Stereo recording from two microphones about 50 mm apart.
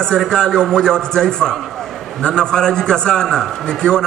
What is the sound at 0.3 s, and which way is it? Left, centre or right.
A man's voice, centre.